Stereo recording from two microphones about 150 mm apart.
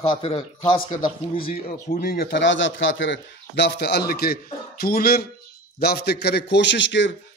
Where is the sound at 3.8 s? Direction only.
90° left.